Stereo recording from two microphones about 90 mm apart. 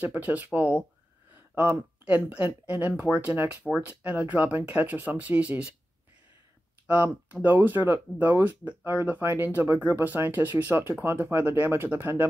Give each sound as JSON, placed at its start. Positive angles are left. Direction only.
{"t": 0.0, "sound": "speech", "side_deg": -20}
{"t": 6.9, "sound": "speech", "side_deg": -15}